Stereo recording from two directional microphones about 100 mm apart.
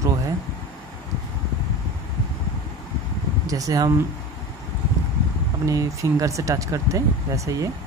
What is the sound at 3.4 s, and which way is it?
Speech, 35° right (ahead or behind).